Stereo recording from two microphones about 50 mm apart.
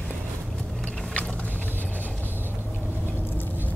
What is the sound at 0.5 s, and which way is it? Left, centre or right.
Vehicle, centre.